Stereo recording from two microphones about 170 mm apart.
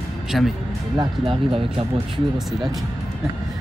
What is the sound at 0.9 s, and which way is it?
Speech, 30° right (ahead or behind).